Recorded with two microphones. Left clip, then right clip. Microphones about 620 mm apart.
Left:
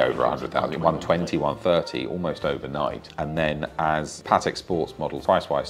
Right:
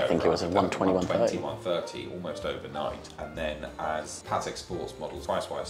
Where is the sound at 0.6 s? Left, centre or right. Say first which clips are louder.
Left 2 dB; left.